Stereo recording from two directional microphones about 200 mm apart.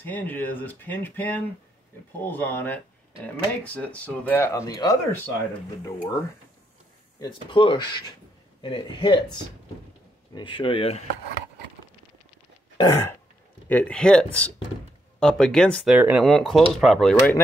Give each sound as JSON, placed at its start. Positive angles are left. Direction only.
{"t": 0.0, "sound": "speech", "side_deg": 10}
{"t": 7.2, "sound": "speech", "side_deg": 25}
{"t": 12.7, "sound": "throat clearing", "side_deg": 20}
{"t": 13.7, "sound": "speech", "side_deg": 5}